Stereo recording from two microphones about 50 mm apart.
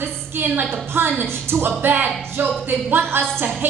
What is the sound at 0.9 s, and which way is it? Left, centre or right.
Speech, right.